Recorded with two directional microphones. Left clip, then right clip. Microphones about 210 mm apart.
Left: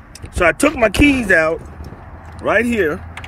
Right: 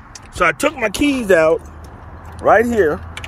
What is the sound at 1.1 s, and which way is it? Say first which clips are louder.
Speech: right 1 dB; 35° left (ahead or behind).